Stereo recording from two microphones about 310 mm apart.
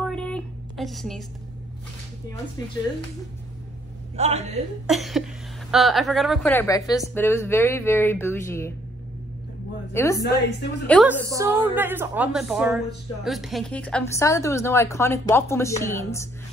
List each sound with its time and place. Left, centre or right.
0.0 s a sound: centre
4.2 s a man's voice: right
4.8 s a woman's voice: centre
9.9 s speech: centre
10.2 s a woman's voice: left
10.9 s a woman's voice: centre
11.2 s a woman's voice: centre